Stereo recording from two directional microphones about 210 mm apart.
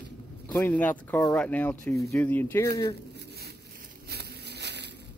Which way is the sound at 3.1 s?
50° right (ahead or behind).